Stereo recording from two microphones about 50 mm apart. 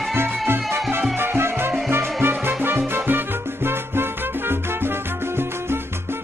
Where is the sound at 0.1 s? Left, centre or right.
Right.